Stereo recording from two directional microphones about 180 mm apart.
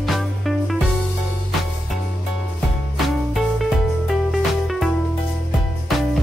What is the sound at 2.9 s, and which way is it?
Music, centre (ahead or behind).